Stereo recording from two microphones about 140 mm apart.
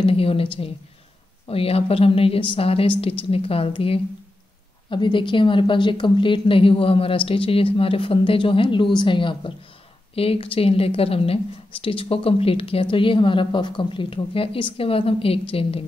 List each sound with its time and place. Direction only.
0.0 s a woman's voice: 40° left (ahead or behind)